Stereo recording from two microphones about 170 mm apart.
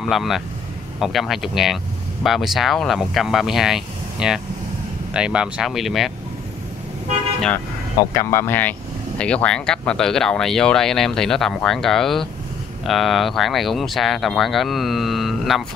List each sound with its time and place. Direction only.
0.0 s speech: centre (ahead or behind)
7.3 s speech: 5° left (ahead or behind)
8.0 s speech: 20° left (ahead or behind); by 15.6 s centre (ahead or behind)